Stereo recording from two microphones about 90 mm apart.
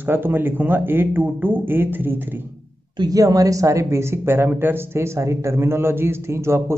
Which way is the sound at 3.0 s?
40° right (ahead or behind).